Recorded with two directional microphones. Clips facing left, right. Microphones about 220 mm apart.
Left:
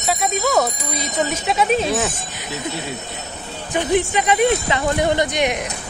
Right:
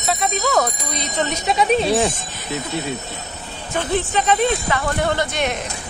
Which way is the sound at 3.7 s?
15° left (ahead or behind).